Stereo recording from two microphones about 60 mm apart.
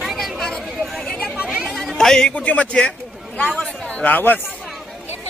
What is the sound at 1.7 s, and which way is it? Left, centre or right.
A man's voice, centre.